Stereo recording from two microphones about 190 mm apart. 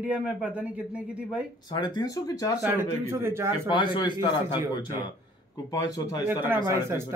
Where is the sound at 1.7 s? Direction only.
20° left (ahead or behind).